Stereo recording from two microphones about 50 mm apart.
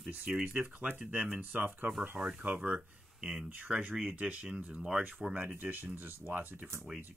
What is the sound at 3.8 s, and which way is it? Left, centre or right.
Speech, right.